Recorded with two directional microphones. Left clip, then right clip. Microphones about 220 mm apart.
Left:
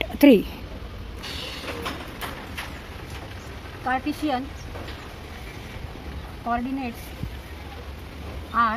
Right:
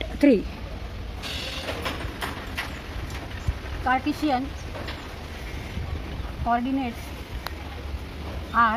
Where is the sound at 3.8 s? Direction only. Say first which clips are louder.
Right 2 dB; 20° left (ahead or behind).